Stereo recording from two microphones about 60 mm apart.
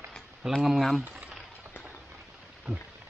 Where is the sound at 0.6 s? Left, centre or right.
Centre.